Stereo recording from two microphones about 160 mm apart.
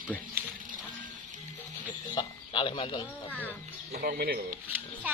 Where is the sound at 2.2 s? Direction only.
30° left (ahead or behind).